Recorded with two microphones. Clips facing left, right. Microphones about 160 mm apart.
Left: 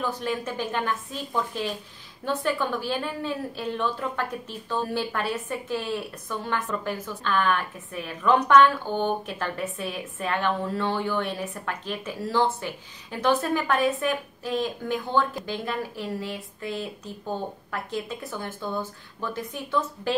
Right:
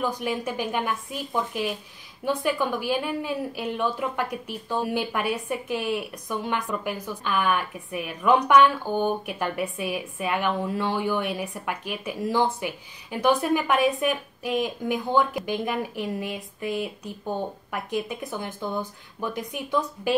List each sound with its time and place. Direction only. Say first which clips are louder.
0.0 s a woman's voice: right 1 dB; 15° right (ahead or behind)